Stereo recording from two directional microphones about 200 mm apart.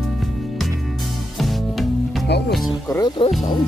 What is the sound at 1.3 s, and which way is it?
Music, centre (ahead or behind).